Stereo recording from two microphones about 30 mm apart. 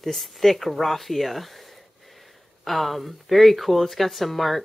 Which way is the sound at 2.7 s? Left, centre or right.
Centre.